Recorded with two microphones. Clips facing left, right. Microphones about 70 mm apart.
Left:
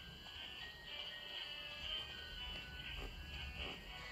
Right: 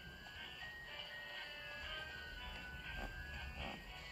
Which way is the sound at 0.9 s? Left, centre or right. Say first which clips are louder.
Right 2 dB; right.